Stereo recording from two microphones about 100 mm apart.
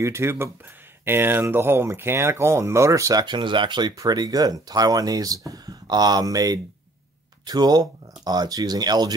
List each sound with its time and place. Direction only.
0.0 s speech: 25° right (ahead or behind)
3.3 s speech: 50° right (ahead or behind)